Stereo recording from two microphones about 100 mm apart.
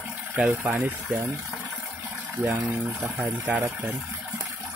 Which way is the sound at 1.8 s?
20° right (ahead or behind).